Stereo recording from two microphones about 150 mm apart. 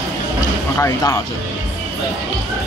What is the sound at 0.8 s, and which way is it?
Speech, 20° left (ahead or behind).